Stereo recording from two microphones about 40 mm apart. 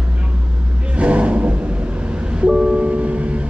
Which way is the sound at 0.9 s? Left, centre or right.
Right.